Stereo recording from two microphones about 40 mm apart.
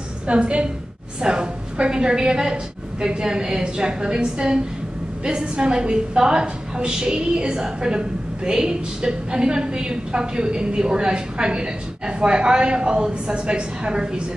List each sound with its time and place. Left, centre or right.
0.3 s a woman's voice: right